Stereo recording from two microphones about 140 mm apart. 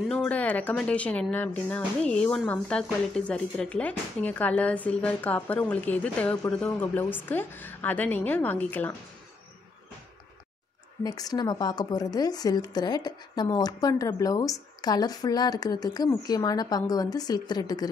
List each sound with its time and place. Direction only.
0.1 s speech: 10° left (ahead or behind)
11.1 s speech: 25° left (ahead or behind)